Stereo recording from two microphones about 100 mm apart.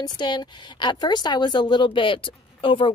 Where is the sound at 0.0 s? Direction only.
45° left (ahead or behind).